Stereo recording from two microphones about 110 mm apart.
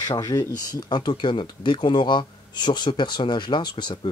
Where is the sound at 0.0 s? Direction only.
35° left (ahead or behind).